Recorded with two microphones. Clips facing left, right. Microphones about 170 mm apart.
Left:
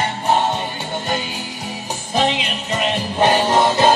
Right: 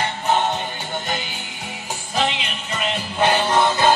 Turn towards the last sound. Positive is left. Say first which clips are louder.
# left 3 dB
turn(degrees=35)  # may be behind; listen again after turning